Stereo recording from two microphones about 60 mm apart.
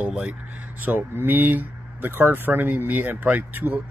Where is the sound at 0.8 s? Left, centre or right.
Right.